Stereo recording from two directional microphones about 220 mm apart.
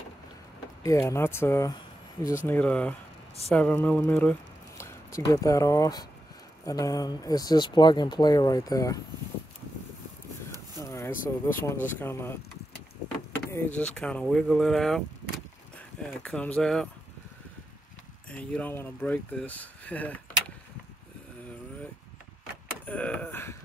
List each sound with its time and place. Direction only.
0.8 s speech: 10° left (ahead or behind)
10.8 s speech: 10° left (ahead or behind)
13.7 s speech: 5° left (ahead or behind)
16.2 s speech: 5° left (ahead or behind)
18.3 s speech: 5° left (ahead or behind)
22.8 s a sound: 5° left (ahead or behind)